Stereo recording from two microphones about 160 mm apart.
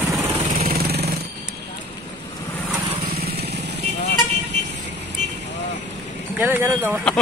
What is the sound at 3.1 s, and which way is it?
Vehicle, 80° right.